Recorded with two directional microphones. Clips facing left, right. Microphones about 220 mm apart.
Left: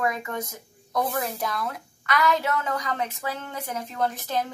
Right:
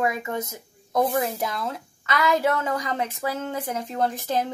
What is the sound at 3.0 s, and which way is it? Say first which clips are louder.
Speech: right 4 dB; 40° right (ahead or behind).